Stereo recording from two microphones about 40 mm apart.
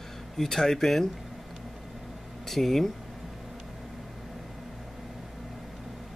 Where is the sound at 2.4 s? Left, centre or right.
Centre.